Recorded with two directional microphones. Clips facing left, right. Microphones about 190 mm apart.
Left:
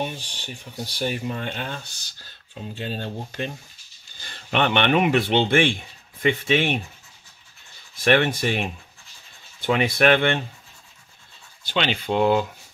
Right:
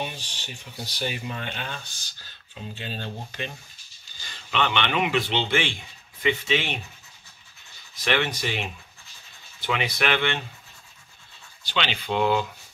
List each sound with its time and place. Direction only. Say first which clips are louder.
0.0 s speech: left 4 dB; 55° left (ahead or behind)
2.8 s speech: left 5 dB; 45° left (ahead or behind)
4.3 s speech: left 4 dB; 55° left (ahead or behind)
7.9 s speech: left 6 dB; 50° left (ahead or behind)
9.7 s speech: left 7 dB; 50° left (ahead or behind)
11.6 s speech: left 4 dB; 45° left (ahead or behind)